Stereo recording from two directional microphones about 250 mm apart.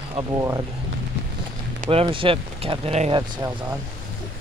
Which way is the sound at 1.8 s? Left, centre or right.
Right.